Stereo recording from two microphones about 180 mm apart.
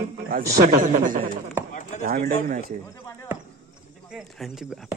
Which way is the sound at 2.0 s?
45° right (ahead or behind).